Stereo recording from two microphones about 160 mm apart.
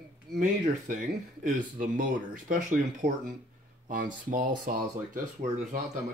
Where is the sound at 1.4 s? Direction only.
55° right (ahead or behind).